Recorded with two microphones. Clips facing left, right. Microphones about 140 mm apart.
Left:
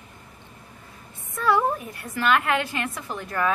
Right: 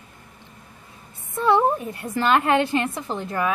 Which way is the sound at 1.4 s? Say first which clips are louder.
Right 3 dB; 25° right (ahead or behind).